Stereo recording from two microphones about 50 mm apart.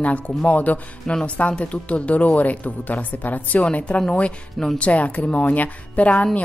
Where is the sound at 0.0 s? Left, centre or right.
Left.